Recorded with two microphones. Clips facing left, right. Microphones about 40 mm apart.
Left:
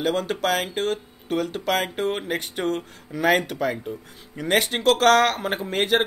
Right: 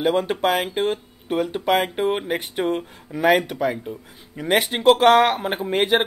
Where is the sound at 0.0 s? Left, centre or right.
Right.